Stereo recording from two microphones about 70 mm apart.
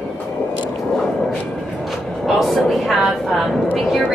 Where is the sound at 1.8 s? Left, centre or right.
Centre.